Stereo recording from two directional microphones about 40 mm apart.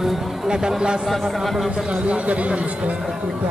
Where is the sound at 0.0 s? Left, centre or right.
Centre.